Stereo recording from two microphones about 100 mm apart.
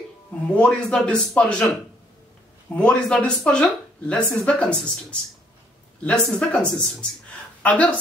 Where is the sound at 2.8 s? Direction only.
10° left (ahead or behind).